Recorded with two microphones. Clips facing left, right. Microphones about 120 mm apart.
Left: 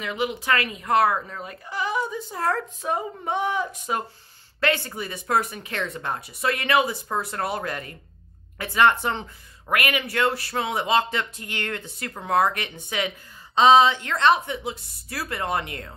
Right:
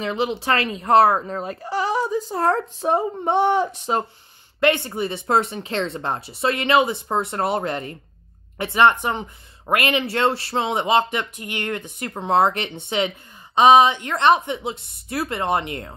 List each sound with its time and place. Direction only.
0.0 s a child's voice: 30° right (ahead or behind)